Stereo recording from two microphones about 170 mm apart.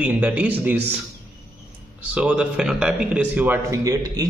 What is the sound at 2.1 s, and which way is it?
A man's voice, 5° right (ahead or behind).